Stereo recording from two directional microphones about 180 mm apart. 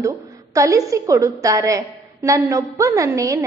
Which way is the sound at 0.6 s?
20° right (ahead or behind).